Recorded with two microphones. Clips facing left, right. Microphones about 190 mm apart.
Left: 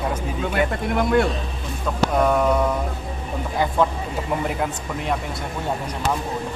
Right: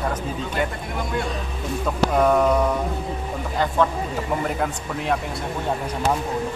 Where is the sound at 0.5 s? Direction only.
60° left (ahead or behind).